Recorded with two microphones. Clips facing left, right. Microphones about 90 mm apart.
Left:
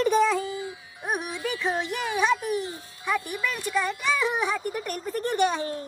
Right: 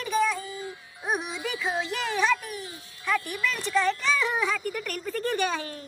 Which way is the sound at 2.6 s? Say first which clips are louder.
Left 3 dB; 20° left (ahead or behind).